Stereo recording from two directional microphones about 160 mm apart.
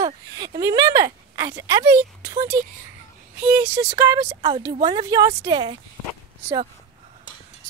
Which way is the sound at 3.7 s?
20° right (ahead or behind).